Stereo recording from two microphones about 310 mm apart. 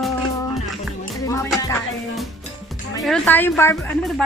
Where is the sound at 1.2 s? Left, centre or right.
Centre.